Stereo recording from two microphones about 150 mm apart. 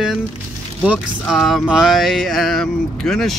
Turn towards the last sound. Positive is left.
turn(degrees=0)  # may be behind; listen again after turning